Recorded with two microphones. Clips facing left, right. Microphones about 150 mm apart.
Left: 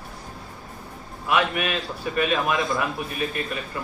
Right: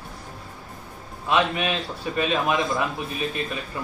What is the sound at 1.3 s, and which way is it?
A man's voice, 25° right (ahead or behind).